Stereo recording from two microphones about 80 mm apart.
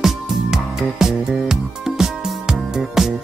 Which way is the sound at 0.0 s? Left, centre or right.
Centre.